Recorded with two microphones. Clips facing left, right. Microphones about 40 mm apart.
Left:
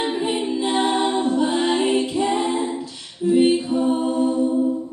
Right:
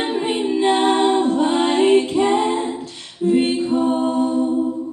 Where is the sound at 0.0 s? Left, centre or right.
Right.